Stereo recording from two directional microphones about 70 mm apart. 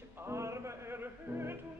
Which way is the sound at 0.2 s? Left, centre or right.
Right.